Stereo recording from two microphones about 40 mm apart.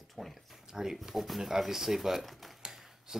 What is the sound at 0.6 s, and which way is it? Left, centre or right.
Speech, centre.